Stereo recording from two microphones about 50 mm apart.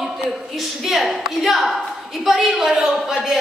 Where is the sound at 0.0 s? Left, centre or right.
Centre.